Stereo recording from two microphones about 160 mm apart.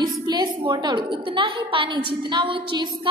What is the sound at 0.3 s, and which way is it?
A woman's voice, 25° right (ahead or behind).